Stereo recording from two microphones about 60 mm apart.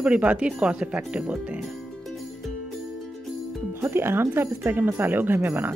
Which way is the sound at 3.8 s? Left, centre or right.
Right.